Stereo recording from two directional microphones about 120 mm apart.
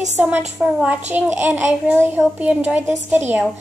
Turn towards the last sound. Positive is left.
turn(degrees=-15)  # may be behind; listen again after turning